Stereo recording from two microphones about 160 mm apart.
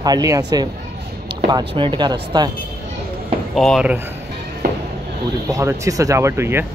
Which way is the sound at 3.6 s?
Centre (ahead or behind).